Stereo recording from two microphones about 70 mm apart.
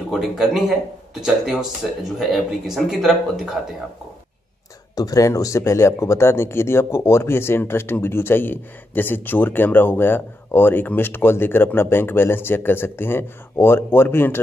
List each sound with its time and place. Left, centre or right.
0.1 s speech: centre
4.9 s speech: left